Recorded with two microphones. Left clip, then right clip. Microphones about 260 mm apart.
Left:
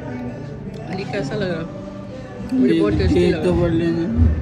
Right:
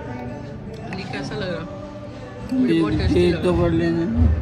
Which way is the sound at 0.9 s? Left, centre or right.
Centre.